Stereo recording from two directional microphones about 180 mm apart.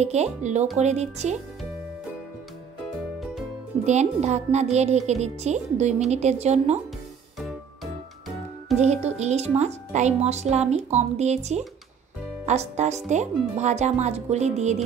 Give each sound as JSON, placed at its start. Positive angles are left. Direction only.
{"t": 0.0, "sound": "speech", "side_deg": -40}
{"t": 3.8, "sound": "speech", "side_deg": -40}
{"t": 8.7, "sound": "speech", "side_deg": -40}